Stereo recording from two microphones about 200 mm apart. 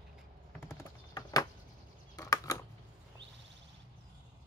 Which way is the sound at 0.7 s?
20° left (ahead or behind).